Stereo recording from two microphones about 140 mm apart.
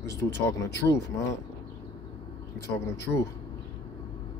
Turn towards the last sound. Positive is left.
turn(degrees=20)  # may be behind; listen again after turning